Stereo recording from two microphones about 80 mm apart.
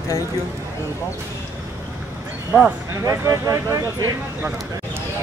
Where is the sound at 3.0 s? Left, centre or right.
Right.